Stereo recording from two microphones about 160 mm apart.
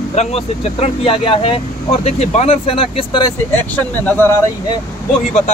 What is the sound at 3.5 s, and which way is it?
Speech, 15° left (ahead or behind).